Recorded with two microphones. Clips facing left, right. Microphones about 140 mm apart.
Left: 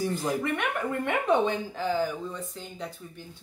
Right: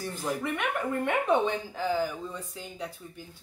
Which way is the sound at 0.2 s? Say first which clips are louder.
Left 2 dB; centre (ahead or behind).